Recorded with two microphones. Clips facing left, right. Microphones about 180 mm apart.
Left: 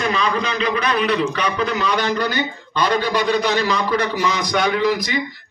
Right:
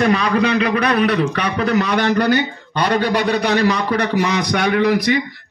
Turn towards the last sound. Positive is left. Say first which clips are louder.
# right 6 dB
turn(degrees=-60)  # may be behind; listen again after turning